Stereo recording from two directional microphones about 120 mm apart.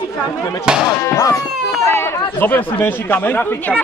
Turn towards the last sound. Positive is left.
turn(degrees=15)  # may be behind; listen again after turning